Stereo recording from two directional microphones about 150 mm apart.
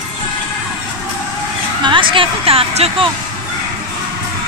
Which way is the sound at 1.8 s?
35° right (ahead or behind).